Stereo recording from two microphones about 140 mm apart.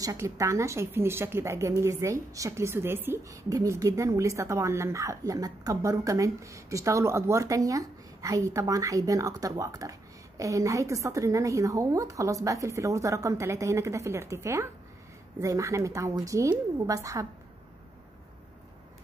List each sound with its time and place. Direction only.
0.0 s a woman's voice: 25° right (ahead or behind)